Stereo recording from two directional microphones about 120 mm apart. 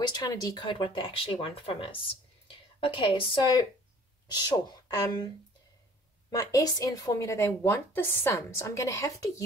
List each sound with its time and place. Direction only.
0.0 s speech: 35° left (ahead or behind)
4.3 s speech: 35° left (ahead or behind)
6.3 s a woman's voice: 30° left (ahead or behind)